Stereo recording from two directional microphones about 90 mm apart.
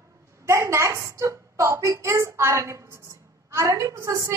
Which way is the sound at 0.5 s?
30° right (ahead or behind).